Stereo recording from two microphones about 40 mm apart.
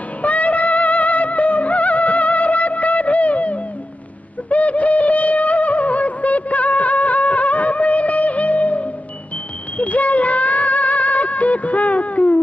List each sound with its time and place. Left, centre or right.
0.2 s music: left